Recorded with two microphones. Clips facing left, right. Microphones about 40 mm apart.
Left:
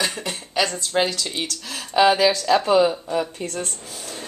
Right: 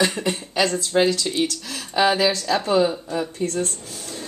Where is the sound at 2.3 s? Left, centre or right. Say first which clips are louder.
Left 3 dB; left.